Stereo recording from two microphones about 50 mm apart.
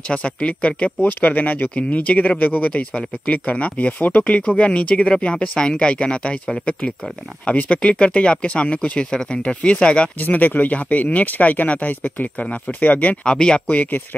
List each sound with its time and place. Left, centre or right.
0.1 s speech: left
1.2 s speech: left
10.2 s speech: left
13.2 s speech: centre